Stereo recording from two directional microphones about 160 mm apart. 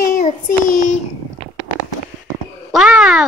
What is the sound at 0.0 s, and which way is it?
Child singing, 55° left (ahead or behind).